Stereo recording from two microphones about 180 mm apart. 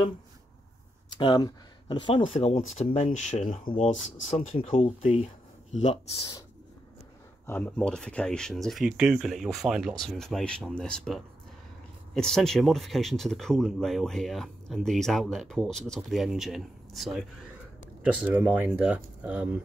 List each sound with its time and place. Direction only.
1.2 s speech: 25° left (ahead or behind)
7.4 s speech: 10° left (ahead or behind); by 19.6 s 5° right (ahead or behind)